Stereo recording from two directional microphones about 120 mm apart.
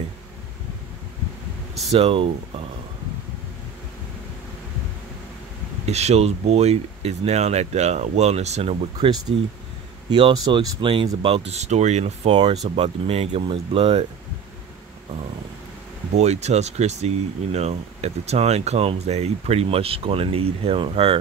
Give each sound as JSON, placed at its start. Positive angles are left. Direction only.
{"t": 1.9, "sound": "speech", "side_deg": -50}
{"t": 5.9, "sound": "speech", "side_deg": -65}
{"t": 9.3, "sound": "speech", "side_deg": -55}
{"t": 10.0, "sound": "speech", "side_deg": -40}
{"t": 11.2, "sound": "speech", "side_deg": -55}
{"t": 12.6, "sound": "speech", "side_deg": -55}
{"t": 16.2, "sound": "speech", "side_deg": -70}